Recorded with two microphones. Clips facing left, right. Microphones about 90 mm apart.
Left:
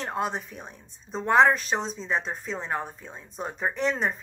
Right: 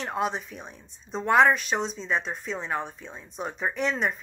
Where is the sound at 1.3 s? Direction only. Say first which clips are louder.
Even; 35° left (ahead or behind).